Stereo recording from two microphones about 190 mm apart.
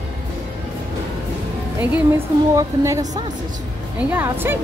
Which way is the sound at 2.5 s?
15° right (ahead or behind).